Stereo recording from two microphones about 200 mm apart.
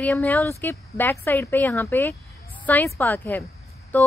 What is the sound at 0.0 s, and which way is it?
Speech, 5° left (ahead or behind).